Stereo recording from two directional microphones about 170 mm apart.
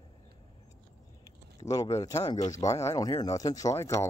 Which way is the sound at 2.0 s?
20° left (ahead or behind).